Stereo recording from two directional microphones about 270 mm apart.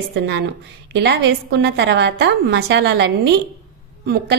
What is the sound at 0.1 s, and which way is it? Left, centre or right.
A woman's voice, right.